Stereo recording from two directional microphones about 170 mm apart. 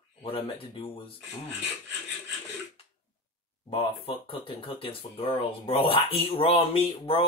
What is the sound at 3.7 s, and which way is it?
Speech, 30° left (ahead or behind).